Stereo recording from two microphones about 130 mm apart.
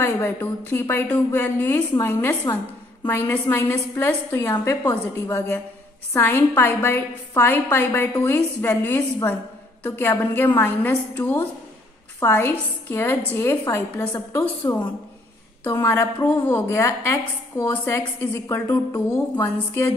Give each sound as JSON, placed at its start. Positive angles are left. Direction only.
{"t": 0.0, "sound": "a woman's voice", "side_deg": 15}
{"t": 15.8, "sound": "a woman's voice", "side_deg": 20}